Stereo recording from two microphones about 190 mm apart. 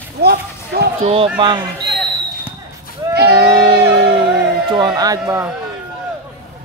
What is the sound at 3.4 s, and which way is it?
Music, 20° right (ahead or behind).